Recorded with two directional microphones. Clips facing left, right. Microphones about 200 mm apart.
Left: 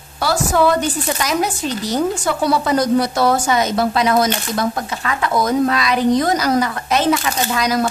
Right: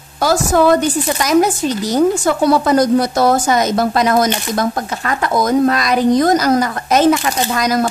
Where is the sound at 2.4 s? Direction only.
45° right (ahead or behind).